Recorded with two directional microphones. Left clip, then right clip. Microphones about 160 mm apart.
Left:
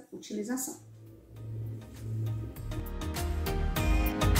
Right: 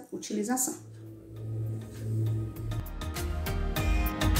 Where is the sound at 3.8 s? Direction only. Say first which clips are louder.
Even; centre (ahead or behind).